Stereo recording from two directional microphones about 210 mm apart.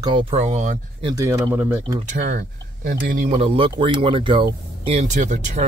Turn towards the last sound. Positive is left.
turn(degrees=-35)  # may be behind; listen again after turning